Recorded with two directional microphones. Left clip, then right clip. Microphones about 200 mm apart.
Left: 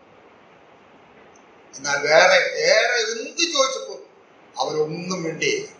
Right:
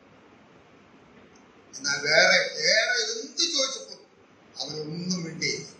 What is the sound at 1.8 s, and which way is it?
A man's voice, 35° right (ahead or behind).